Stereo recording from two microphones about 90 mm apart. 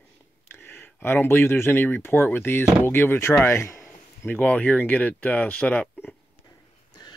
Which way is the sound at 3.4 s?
30° left (ahead or behind).